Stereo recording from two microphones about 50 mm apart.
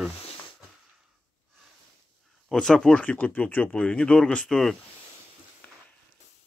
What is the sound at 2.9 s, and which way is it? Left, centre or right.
Speech, left.